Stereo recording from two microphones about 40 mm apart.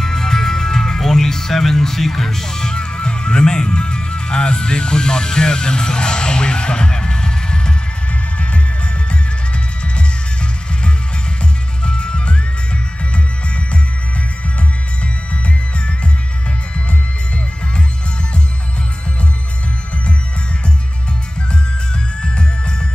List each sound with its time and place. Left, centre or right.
0.0 s music: centre
9.9 s music: left
22.2 s jingle bell: left